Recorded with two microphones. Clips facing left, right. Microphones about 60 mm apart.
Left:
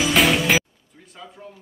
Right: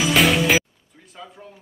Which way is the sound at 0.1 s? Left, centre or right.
Centre.